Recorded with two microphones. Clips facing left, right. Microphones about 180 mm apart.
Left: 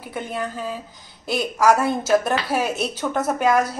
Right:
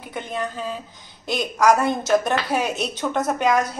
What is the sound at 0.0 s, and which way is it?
A woman's voice, 5° left (ahead or behind).